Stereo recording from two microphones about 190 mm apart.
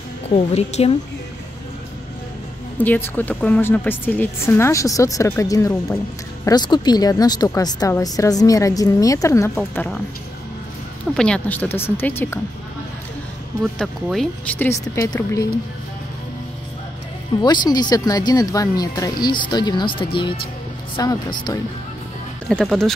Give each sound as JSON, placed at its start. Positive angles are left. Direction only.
{"t": 0.3, "sound": "a woman's voice", "side_deg": 35}
{"t": 2.8, "sound": "a woman's voice", "side_deg": 10}
{"t": 11.1, "sound": "a woman's voice", "side_deg": 5}
{"t": 14.0, "sound": "a woman's voice", "side_deg": 0}
{"t": 17.4, "sound": "speech", "side_deg": 20}
{"t": 22.5, "sound": "speech", "side_deg": 0}